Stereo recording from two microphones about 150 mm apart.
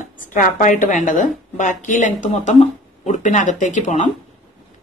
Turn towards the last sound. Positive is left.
turn(degrees=55)  # may be behind; listen again after turning